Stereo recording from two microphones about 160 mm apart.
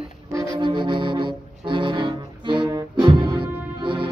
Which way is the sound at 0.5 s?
30° right (ahead or behind).